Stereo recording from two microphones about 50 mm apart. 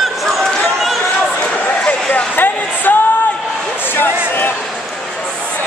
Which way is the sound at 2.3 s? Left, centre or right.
Left.